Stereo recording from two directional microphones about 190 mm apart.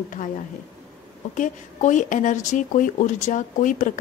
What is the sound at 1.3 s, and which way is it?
A woman's voice, 40° left (ahead or behind).